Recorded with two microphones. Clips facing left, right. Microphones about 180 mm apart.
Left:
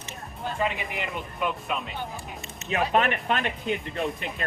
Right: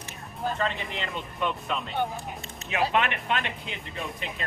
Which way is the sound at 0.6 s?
10° left (ahead or behind).